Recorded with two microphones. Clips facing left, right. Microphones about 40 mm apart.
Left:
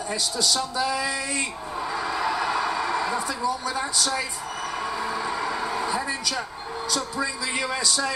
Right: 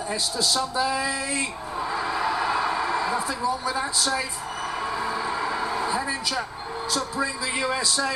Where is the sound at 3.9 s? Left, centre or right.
Centre.